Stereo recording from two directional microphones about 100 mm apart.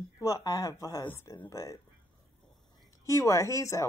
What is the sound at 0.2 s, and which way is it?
A woman's voice, 35° left (ahead or behind).